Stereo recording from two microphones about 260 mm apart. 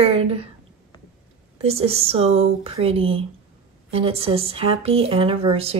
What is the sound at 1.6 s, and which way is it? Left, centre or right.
Speech, right.